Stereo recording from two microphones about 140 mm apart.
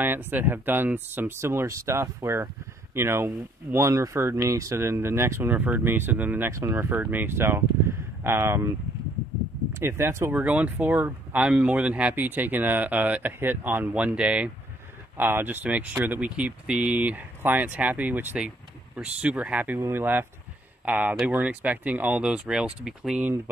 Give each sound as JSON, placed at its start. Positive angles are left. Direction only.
{"t": 0.0, "sound": "speech", "side_deg": -15}
{"t": 9.8, "sound": "speech", "side_deg": -20}